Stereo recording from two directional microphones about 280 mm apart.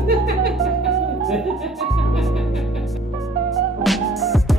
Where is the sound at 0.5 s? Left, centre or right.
Centre.